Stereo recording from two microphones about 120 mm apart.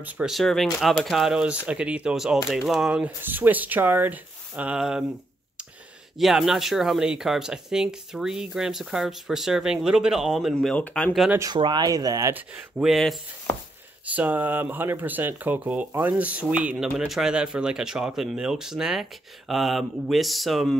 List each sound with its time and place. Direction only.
0.0 s speech: 5° right (ahead or behind)
6.1 s speech: centre (ahead or behind)
10.5 s speech: 5° left (ahead or behind)
11.5 s speech: 40° right (ahead or behind)
12.4 s speech: 5° right (ahead or behind)
14.0 s speech: 15° right (ahead or behind)